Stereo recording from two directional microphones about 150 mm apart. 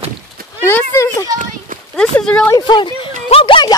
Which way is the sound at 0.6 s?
15° left (ahead or behind).